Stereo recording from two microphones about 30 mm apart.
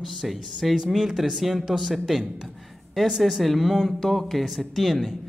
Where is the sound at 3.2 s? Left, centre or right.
Centre.